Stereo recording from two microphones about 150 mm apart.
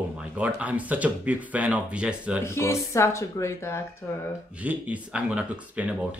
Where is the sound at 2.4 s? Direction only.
15° left (ahead or behind).